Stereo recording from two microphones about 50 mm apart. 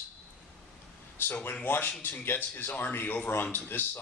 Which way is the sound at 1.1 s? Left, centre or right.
Left.